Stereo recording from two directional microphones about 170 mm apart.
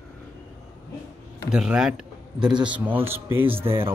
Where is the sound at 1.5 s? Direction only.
5° right (ahead or behind).